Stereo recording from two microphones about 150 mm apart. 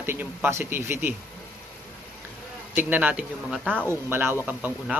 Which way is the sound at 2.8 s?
10° right (ahead or behind).